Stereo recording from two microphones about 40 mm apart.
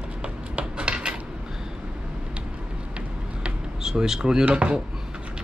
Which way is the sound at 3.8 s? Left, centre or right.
Centre.